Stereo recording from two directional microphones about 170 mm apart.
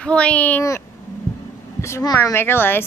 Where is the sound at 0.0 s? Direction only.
5° left (ahead or behind).